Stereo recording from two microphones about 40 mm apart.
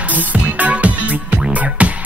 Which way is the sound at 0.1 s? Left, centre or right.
Right.